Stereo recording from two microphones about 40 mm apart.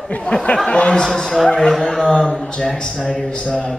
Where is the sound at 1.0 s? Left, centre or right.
Centre.